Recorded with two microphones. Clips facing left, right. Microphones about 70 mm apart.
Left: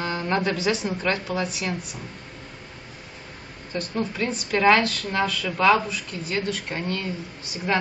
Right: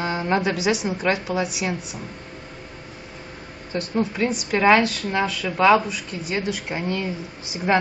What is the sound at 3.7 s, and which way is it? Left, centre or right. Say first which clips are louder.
A woman's voice: right 4 dB; centre.